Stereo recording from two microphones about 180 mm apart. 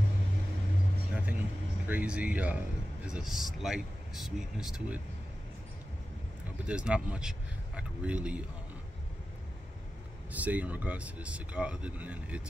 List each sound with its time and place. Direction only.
1.1 s music: 10° right (ahead or behind)
1.9 s speech: 10° right (ahead or behind)
6.6 s speech: 5° right (ahead or behind)
10.3 s speech: 10° right (ahead or behind)